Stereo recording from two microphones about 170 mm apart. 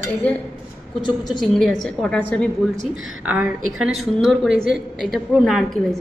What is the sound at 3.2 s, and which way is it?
A woman's voice, 5° right (ahead or behind).